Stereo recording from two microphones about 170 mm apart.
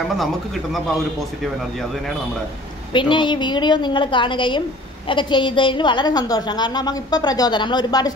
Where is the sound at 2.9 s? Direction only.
30° left (ahead or behind).